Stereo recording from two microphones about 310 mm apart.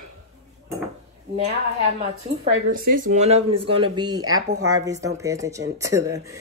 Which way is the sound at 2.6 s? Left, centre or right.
Right.